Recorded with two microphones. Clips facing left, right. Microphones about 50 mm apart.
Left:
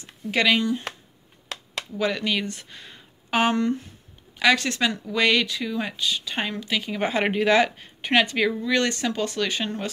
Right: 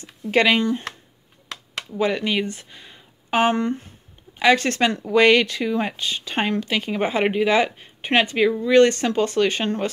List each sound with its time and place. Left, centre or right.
0.0 s speech: right
2.0 s speech: right
3.3 s speech: right
7.0 s speech: right